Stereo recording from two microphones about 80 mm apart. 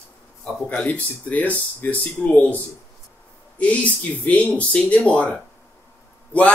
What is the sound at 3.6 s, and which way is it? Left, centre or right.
Speech, centre.